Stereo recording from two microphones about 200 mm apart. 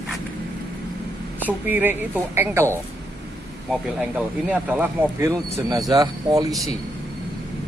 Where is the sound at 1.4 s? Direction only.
10° right (ahead or behind).